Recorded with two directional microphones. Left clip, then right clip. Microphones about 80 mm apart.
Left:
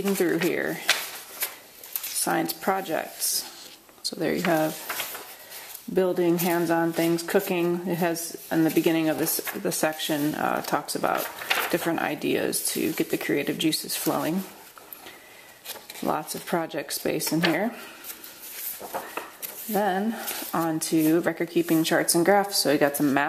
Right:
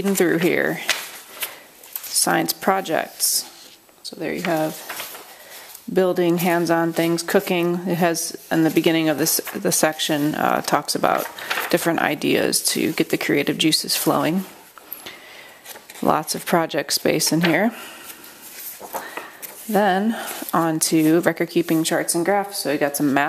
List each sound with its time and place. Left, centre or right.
0.1 s speech: right
1.4 s a sound: centre
2.2 s speech: right
4.0 s a sound: left
4.4 s stir: centre
5.9 s speech: right
11.1 s speech: centre
11.7 s speech: right
16.0 s speech: right
18.8 s a sound: centre
19.7 s speech: right
22.2 s speech: centre
22.5 s speech: left
23.0 s speech: centre